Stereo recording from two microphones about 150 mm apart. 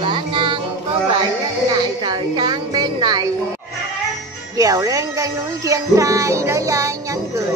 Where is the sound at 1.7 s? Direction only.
30° right (ahead or behind).